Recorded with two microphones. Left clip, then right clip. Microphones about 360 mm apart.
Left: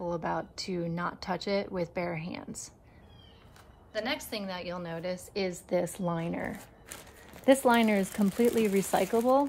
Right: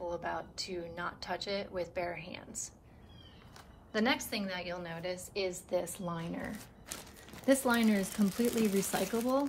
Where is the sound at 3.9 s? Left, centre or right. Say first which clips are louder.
Right 1 dB; centre; by 9.4 s left.